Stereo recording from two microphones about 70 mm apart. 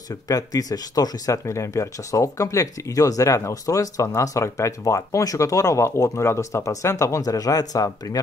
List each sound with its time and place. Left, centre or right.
0.3 s speech: left